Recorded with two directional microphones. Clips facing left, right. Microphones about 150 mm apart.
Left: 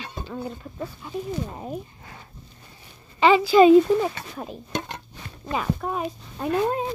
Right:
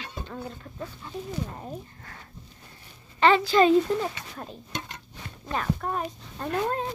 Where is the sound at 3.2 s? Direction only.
10° left (ahead or behind).